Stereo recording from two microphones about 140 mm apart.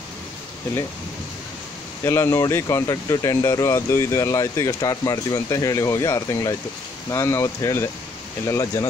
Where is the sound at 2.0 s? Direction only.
20° left (ahead or behind).